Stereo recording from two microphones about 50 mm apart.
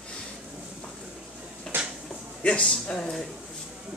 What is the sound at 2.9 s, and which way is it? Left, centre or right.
Speech, centre.